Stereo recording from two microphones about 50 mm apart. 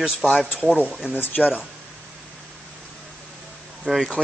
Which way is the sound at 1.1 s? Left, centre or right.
Left.